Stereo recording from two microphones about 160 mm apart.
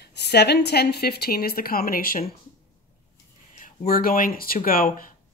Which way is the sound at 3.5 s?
60° left (ahead or behind).